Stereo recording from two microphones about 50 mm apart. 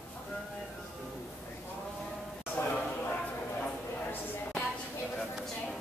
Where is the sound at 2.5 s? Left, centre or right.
Left.